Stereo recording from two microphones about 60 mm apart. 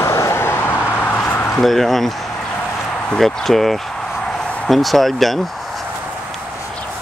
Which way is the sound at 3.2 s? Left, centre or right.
Centre.